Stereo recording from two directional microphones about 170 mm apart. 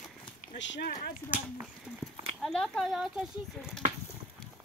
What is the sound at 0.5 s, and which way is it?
Speech, 90° left.